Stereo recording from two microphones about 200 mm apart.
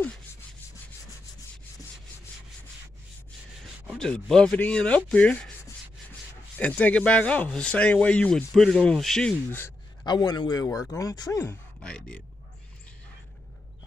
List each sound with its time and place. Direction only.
0.0 s rub: 10° left (ahead or behind)
3.6 s rub: 5° right (ahead or behind)
4.1 s speech: 5° left (ahead or behind)
6.6 s speech: 10° left (ahead or behind)
10.0 s a man's voice: 20° left (ahead or behind)
11.8 s speech: 5° left (ahead or behind)